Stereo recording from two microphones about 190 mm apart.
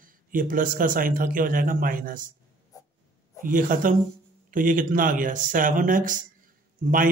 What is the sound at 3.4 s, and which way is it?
A man's voice, 45° right (ahead or behind).